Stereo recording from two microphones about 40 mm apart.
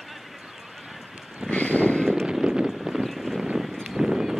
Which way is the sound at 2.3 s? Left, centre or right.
Centre.